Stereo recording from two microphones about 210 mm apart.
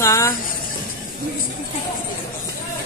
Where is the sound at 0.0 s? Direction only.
15° left (ahead or behind).